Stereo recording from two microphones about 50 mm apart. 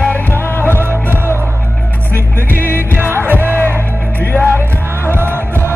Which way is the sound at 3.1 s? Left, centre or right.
Right.